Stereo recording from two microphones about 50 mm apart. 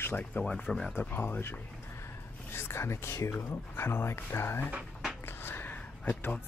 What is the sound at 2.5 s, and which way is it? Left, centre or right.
Speech, left.